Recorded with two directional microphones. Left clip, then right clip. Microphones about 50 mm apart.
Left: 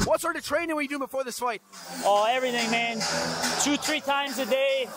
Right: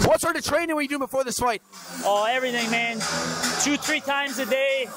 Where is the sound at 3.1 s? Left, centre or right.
Right.